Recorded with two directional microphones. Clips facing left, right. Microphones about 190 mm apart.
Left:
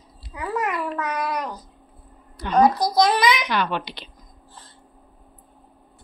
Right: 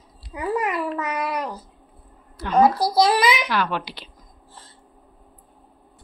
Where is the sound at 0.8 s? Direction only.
5° right (ahead or behind).